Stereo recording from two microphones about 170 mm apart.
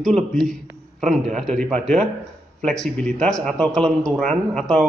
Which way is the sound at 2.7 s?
5° left (ahead or behind).